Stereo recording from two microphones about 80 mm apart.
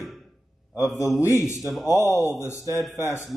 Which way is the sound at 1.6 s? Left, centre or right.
Centre.